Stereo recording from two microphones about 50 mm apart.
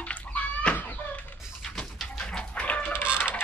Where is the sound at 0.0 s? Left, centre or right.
Left.